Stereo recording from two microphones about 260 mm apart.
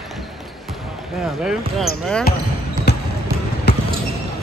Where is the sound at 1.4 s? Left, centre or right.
Centre.